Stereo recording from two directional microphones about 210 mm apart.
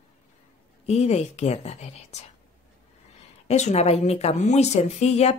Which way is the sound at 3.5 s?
30° left (ahead or behind).